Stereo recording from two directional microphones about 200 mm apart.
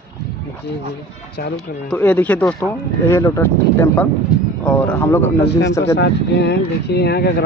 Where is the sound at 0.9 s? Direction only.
50° left (ahead or behind).